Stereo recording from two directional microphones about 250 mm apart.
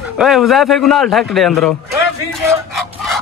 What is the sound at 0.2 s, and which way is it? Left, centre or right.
Speech, centre.